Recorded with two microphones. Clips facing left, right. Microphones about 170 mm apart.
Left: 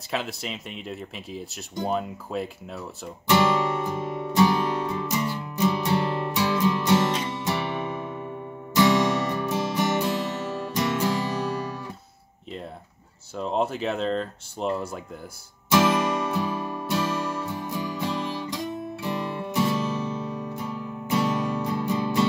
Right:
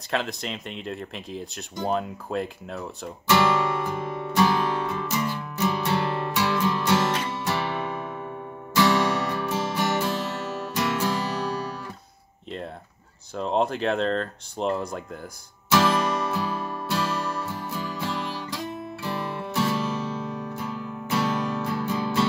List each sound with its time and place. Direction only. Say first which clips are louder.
0.1 s speech: right 2 dB; 5° left (ahead or behind)
3.3 s music: even; 20° left (ahead or behind)
13.4 s speech: right 2 dB; 5° left (ahead or behind)
15.7 s music: left 1 dB; 20° left (ahead or behind)